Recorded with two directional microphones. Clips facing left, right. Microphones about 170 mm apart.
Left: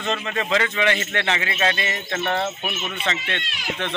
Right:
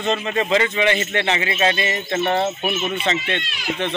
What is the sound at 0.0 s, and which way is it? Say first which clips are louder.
A man's voice: right 4 dB; 20° right (ahead or behind).